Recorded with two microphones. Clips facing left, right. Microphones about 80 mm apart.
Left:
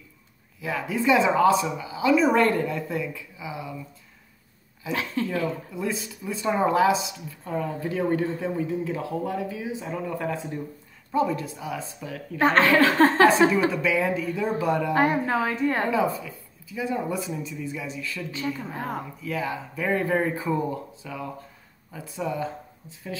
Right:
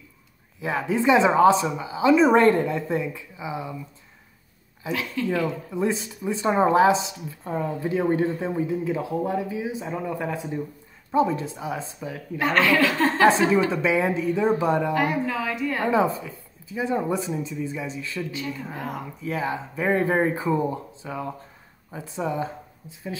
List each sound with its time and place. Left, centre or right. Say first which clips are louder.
0.6 s speech: right 3 dB; right
4.9 s a woman's voice: even; left
5.3 s speech: right 2 dB; right
12.4 s a woman's voice: left 2 dB; left
13.7 s speech: right 1 dB; right
15.0 s a woman's voice: left 2 dB; left
15.9 s speech: right 2 dB; right
18.8 s a woman's voice: left 1 dB; left
19.2 s speech: right 3 dB; right